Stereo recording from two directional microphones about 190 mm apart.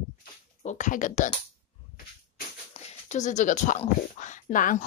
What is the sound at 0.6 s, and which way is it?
Speech, 40° left (ahead or behind).